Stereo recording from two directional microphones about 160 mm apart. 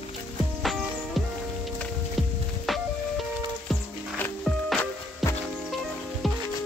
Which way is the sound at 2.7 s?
Centre (ahead or behind).